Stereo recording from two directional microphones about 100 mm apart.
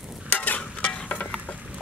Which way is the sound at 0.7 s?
15° left (ahead or behind).